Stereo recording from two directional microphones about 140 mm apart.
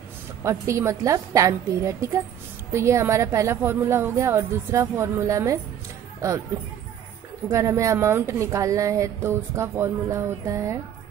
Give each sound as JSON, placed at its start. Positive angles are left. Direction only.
{"t": 0.4, "sound": "a woman's voice", "side_deg": -20}
{"t": 7.4, "sound": "a woman's voice", "side_deg": -20}